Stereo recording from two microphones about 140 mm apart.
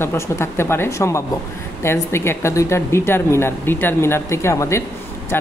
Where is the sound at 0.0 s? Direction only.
20° left (ahead or behind).